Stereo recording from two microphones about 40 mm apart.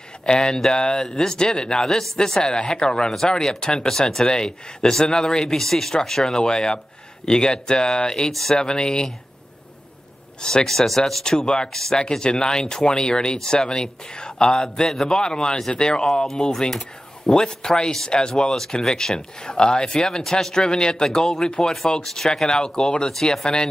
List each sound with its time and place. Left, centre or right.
0.2 s speech: centre
5.5 s speech: centre
8.3 s speech: centre
8.5 s speech: centre
10.4 s speech: centre
23.0 s speech: centre